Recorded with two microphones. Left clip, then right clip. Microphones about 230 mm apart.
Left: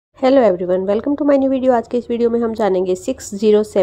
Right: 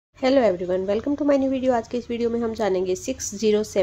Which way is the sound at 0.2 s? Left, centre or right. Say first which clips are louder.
Left 7 dB; centre.